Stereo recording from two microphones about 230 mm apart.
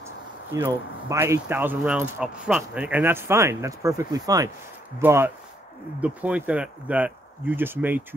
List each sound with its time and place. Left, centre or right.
0.6 s speech: centre